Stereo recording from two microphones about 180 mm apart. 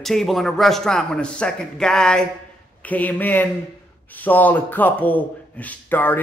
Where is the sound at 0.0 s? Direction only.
Centre (ahead or behind).